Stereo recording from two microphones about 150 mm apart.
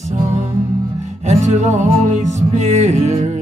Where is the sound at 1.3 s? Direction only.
50° right (ahead or behind).